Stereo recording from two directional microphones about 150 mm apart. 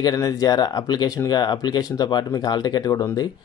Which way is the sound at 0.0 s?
25° left (ahead or behind).